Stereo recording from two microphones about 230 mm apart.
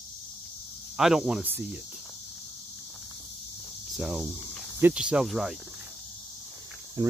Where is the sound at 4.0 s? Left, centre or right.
Centre.